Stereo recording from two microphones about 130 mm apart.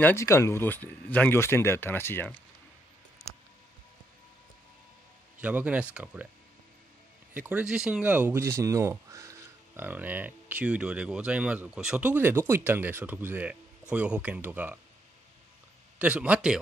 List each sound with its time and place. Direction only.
0.0 s speech: 20° left (ahead or behind)
5.4 s speech: 10° right (ahead or behind)
7.3 s speech: 10° right (ahead or behind)
9.8 s speech: 15° right (ahead or behind)
16.0 s speech: 10° right (ahead or behind)